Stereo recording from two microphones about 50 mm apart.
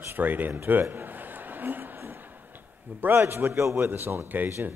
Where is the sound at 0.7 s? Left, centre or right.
Right.